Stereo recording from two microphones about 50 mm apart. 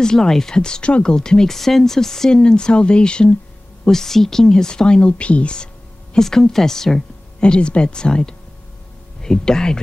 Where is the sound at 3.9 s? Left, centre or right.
Centre.